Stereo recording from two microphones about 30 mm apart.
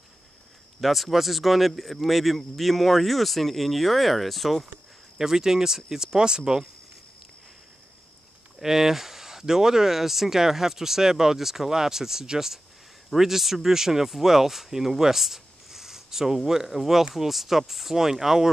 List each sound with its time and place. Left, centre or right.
0.7 s speech: centre
5.2 s speech: centre
8.5 s speech: centre
9.9 s speech: centre